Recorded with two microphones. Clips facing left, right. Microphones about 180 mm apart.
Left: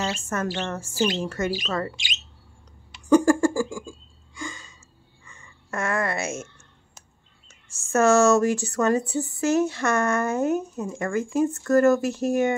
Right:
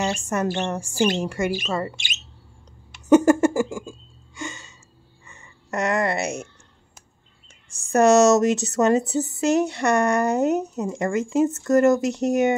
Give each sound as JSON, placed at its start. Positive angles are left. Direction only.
{"t": 0.2, "sound": "a woman's voice", "side_deg": -15}
{"t": 3.1, "sound": "a sound", "side_deg": -20}
{"t": 7.9, "sound": "speech", "side_deg": -20}